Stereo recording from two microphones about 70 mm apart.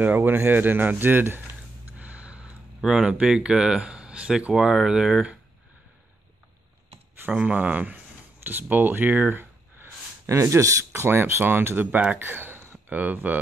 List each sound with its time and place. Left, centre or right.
0.0 s speech: right
2.0 s a sound: centre
2.8 s speech: centre
7.2 s speech: centre
9.4 s a sound: right
10.2 s speech: right
10.9 s speech: right